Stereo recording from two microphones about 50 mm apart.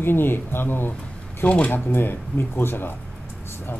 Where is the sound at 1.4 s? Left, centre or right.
Left.